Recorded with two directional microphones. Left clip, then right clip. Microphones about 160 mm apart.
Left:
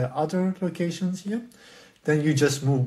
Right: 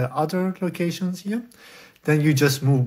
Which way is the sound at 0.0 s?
35° right (ahead or behind).